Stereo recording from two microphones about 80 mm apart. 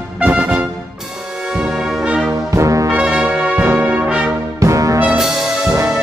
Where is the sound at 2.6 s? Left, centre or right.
Right.